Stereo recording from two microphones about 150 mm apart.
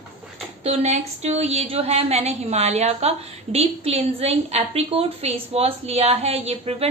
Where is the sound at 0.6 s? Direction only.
45° right (ahead or behind).